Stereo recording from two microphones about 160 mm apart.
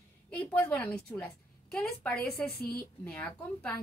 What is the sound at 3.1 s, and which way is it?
Speech, 5° left (ahead or behind).